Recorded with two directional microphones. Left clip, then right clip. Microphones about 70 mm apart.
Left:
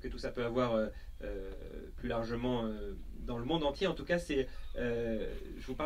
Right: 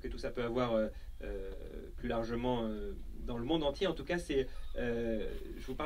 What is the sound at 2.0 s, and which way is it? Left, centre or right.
A man's voice, left.